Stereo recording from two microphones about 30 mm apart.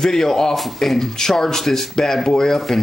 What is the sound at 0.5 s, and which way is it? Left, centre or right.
Speech, centre.